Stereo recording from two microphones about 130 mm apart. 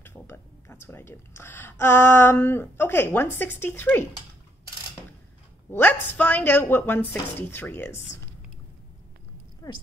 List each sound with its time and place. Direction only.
0.0 s speech: 15° left (ahead or behind)
5.7 s speech: 15° left (ahead or behind)